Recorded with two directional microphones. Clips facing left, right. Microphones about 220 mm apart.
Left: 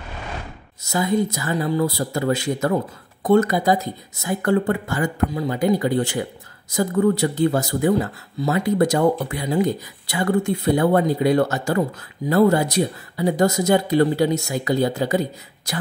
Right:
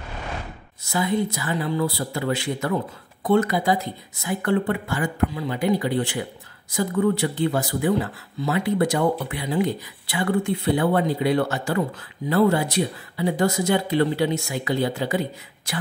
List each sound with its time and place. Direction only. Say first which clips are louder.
0.8 s speech: left 3 dB; 40° left (ahead or behind)